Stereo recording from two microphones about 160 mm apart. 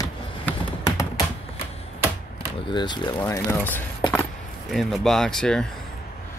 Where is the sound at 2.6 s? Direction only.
30° left (ahead or behind).